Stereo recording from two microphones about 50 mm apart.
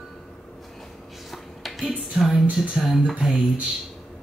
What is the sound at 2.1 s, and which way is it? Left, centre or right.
Speech, centre.